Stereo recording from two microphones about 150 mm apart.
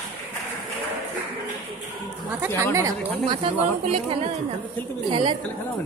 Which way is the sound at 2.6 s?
20° right (ahead or behind).